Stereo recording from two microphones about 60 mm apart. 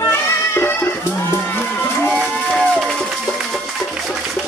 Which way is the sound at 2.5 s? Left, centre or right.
Centre.